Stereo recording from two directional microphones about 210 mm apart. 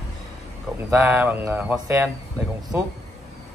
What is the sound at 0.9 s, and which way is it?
Speech, 10° right (ahead or behind).